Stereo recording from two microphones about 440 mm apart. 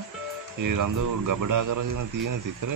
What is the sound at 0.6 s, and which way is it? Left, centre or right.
Speech, right.